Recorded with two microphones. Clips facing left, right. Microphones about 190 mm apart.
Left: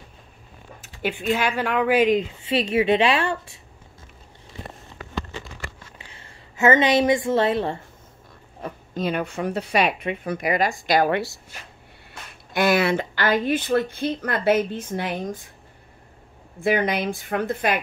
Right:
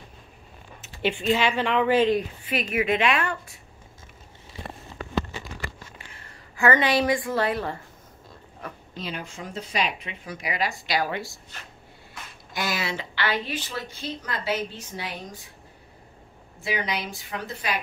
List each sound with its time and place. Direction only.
1.0 s a woman's voice: 5° left (ahead or behind); by 3.5 s 30° left (ahead or behind)
6.1 s a woman's voice: 25° left (ahead or behind)
8.9 s speech: 55° left (ahead or behind)
12.5 s speech: 60° left (ahead or behind)
16.5 s speech: 55° left (ahead or behind)